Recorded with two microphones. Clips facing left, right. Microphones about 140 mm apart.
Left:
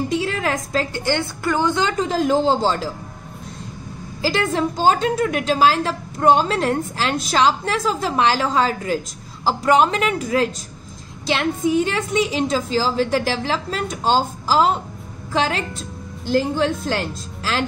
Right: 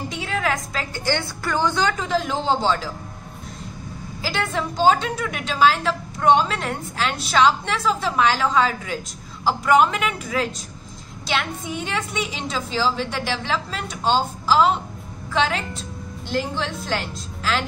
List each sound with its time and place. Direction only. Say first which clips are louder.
0.2 s a sound: left 2 dB; 35° left (ahead or behind)
1.0 s a woman's voice: left 3 dB; 20° left (ahead or behind)
2.0 s a woman's voice: left 5 dB; 40° left (ahead or behind)
4.5 s a woman's voice: right 1 dB; 40° left (ahead or behind)
11.9 s a woman's voice: left 6 dB; 40° left (ahead or behind)